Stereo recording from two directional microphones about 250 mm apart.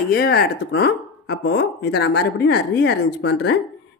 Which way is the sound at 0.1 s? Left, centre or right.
Left.